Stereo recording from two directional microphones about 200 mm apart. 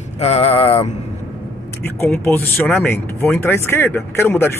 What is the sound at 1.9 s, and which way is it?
Speech, 10° left (ahead or behind).